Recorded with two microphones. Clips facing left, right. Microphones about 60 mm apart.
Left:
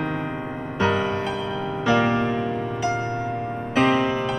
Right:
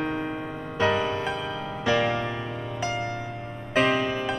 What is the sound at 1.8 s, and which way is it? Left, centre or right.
Music, left.